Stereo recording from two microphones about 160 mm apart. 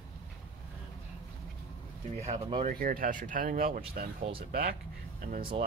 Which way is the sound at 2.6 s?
60° right (ahead or behind).